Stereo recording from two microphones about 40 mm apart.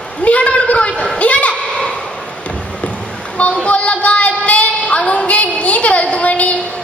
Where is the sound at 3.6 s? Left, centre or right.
Left.